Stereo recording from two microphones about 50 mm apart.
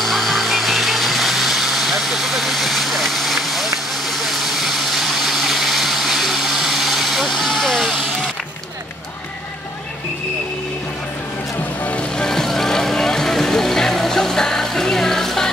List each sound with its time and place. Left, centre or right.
0.0 s vehicle: centre
11.8 s music: left
12.2 s music: centre